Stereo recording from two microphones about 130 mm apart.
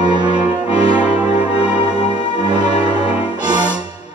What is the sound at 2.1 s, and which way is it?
Music, 35° right (ahead or behind).